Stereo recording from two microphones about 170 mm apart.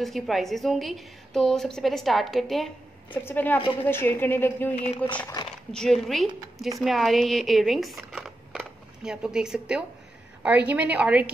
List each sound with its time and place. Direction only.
0.0 s a woman's voice: centre (ahead or behind)
4.7 s speech: 40° left (ahead or behind)
5.7 s a woman's voice: 5° left (ahead or behind)